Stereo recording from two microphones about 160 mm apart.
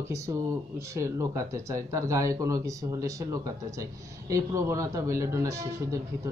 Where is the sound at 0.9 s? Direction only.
20° right (ahead or behind).